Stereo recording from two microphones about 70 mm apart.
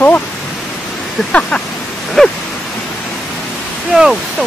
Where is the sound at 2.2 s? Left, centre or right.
Centre.